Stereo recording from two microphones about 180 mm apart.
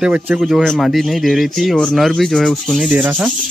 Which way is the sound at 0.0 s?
5° right (ahead or behind).